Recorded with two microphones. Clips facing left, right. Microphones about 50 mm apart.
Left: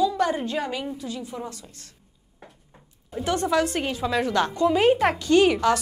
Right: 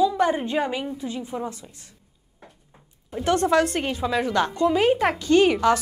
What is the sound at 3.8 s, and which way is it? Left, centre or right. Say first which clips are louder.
Speech: right 1 dB; centre.